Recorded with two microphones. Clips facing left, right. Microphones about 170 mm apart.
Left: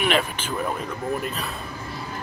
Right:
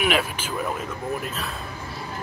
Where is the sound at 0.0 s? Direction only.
5° right (ahead or behind).